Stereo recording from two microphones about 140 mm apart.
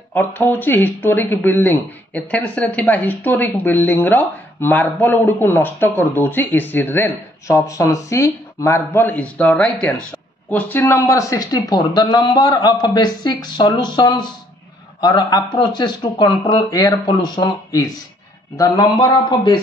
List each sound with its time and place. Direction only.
0.1 s speech: 15° left (ahead or behind); by 19.6 s 30° left (ahead or behind)